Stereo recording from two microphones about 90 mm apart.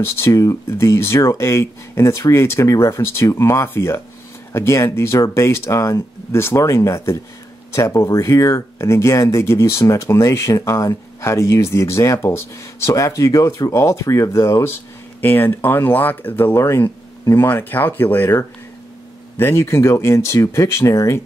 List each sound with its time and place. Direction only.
0.2 s speech: 35° left (ahead or behind)